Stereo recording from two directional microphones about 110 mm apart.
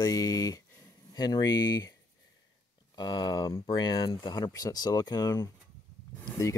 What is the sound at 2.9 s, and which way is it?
Speech, 40° left (ahead or behind).